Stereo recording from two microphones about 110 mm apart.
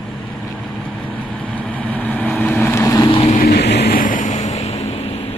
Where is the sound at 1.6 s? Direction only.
15° left (ahead or behind).